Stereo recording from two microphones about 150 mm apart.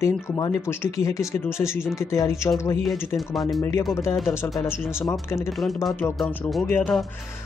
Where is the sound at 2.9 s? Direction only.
Centre (ahead or behind).